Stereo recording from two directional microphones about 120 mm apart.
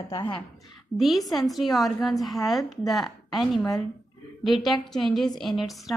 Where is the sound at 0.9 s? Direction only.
Centre (ahead or behind).